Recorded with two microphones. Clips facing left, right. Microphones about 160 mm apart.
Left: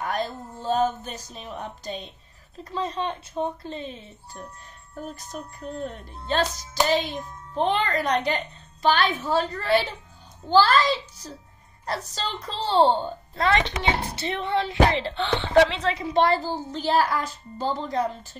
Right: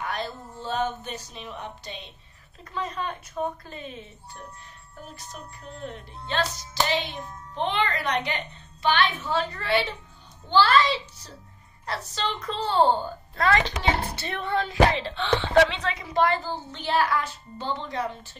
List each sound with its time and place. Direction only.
0.0 s a woman's voice: 45° left (ahead or behind)
5.1 s music: 45° left (ahead or behind)
11.8 s a woman's voice: 40° left (ahead or behind)
15.7 s music: 30° left (ahead or behind)